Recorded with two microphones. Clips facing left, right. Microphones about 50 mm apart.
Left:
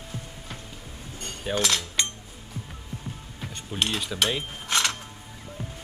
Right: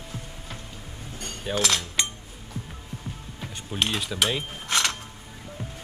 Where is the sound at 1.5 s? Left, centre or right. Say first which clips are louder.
Even; centre.